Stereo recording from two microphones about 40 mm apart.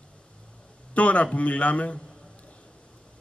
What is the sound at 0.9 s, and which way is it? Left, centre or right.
A man's voice, left.